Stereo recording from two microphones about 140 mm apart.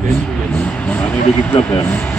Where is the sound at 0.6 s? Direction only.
10° left (ahead or behind).